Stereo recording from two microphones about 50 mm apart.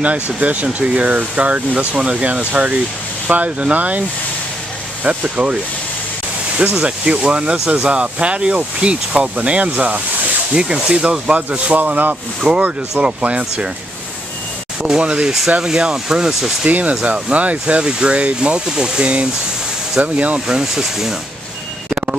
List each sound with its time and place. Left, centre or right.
0.0 s speech: right
5.3 s speech: centre
6.7 s speech: centre
10.5 s speech: centre
11.1 s speech: right
12.4 s speech: right
13.0 s speech: right
14.8 s speech: centre
16.6 s speech: right
20.4 s speech: centre